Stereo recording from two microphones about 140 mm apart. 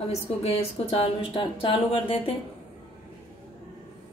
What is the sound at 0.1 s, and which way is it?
A woman's voice, 45° left (ahead or behind).